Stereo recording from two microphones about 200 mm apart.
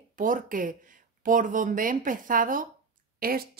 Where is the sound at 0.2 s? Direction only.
40° right (ahead or behind).